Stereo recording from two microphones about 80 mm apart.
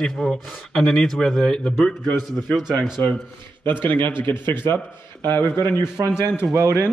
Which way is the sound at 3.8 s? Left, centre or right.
Left.